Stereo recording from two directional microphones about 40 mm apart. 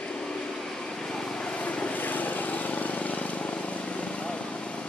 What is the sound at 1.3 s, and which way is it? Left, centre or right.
Vehicle, left.